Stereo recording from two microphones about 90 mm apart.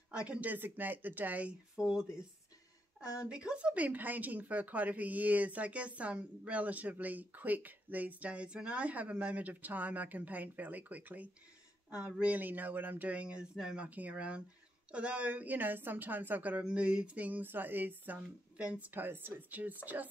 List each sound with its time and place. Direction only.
0.2 s a woman's voice: 15° right (ahead or behind)
3.0 s speech: 40° left (ahead or behind)
3.3 s a woman's voice: 10° right (ahead or behind)